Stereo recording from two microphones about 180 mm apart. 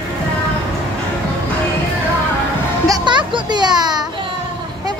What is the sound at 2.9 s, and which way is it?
Children playing, 25° right (ahead or behind).